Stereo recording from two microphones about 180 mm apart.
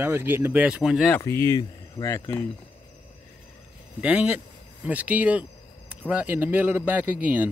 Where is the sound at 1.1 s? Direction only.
15° left (ahead or behind).